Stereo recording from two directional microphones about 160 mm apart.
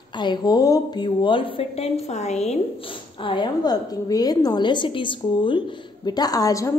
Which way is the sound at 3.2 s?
30° left (ahead or behind).